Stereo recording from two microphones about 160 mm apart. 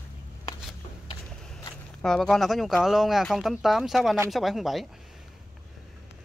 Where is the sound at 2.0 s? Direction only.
5° left (ahead or behind).